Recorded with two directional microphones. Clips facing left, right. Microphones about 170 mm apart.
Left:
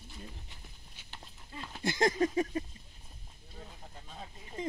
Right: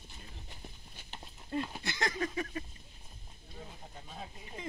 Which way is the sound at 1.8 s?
45° left (ahead or behind).